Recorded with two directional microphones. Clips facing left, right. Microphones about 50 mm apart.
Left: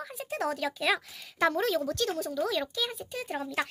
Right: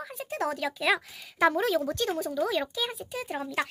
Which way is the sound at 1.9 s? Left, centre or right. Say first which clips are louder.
Right 1 dB; right.